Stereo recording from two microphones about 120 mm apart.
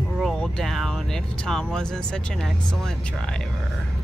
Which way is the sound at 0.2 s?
5° left (ahead or behind).